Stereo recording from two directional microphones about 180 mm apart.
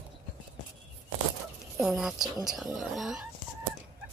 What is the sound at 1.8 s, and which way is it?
Speech, centre (ahead or behind).